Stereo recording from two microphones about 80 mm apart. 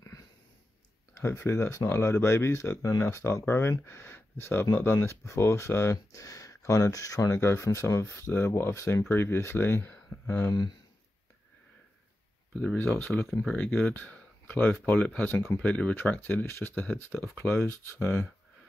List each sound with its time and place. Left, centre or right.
1.1 s speech: left
6.1 s speech: left
12.5 s speech: centre
13.3 s speech: centre
13.6 s speech: centre; by 18.1 s left